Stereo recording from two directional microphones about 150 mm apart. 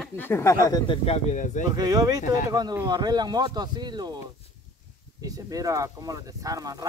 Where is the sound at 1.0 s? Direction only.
45° left (ahead or behind).